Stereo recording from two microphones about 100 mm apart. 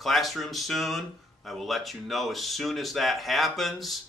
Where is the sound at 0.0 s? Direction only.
Centre (ahead or behind).